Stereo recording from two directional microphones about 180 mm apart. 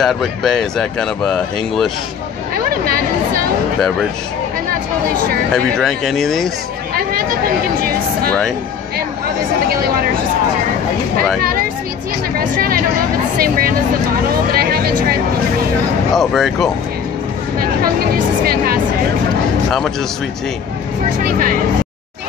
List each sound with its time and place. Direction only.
0.0 s speech: centre (ahead or behind)
5.5 s speech: centre (ahead or behind)
7.0 s a sound: 55° right (ahead or behind)
12.4 s speech: 55° right (ahead or behind)
14.3 s music: 55° right (ahead or behind)
16.1 s speech: centre (ahead or behind)
18.4 s speech: 55° right (ahead or behind)
21.2 s speech: 50° right (ahead or behind)